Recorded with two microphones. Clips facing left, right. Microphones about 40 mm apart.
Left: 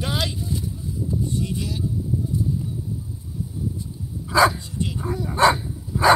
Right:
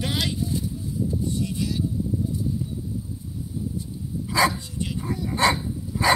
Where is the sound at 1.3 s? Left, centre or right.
Left.